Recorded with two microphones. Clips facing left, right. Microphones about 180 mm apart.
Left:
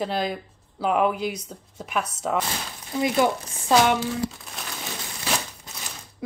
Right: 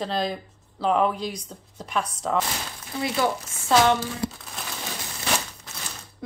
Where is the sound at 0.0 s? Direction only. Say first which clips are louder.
Left 1 dB; 5° left (ahead or behind).